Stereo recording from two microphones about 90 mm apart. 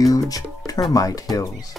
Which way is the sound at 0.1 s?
40° left (ahead or behind).